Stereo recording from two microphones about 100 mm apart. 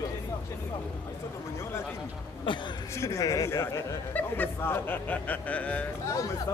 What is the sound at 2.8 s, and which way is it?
A man's voice, 30° left (ahead or behind).